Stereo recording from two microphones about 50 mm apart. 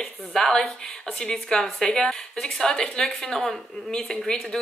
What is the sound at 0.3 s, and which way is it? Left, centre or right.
A woman's voice, centre.